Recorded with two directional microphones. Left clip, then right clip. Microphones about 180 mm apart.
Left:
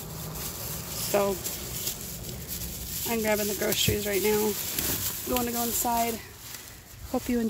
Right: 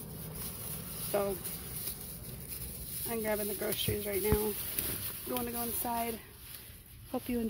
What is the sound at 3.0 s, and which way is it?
Speech, 10° left (ahead or behind).